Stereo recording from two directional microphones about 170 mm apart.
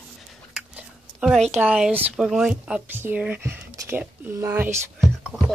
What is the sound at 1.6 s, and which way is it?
Speech, 5° right (ahead or behind).